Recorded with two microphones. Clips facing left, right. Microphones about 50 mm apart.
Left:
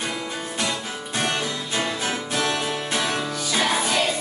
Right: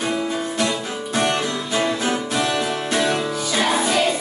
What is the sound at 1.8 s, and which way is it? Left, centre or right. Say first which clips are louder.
Music: right 6 dB; right.